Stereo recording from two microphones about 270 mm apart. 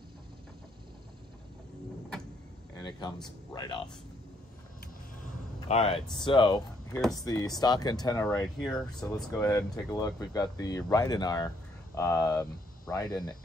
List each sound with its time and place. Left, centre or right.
3.5 s speech: centre
5.7 s speech: left
7.0 s speech: centre
7.2 s speech: centre